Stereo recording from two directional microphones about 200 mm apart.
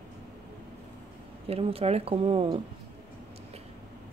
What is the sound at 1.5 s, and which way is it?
Speech, 30° right (ahead or behind).